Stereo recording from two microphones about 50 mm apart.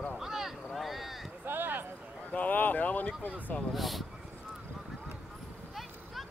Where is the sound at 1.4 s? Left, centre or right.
Right.